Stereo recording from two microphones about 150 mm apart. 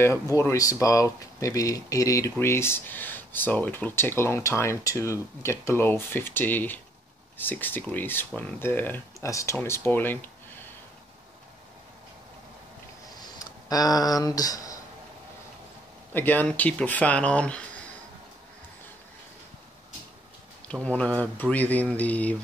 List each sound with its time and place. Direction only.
0.0 s speech: 20° left (ahead or behind)
13.4 s speech: 25° left (ahead or behind)
16.1 s speech: 10° left (ahead or behind)
20.6 s speech: 5° left (ahead or behind)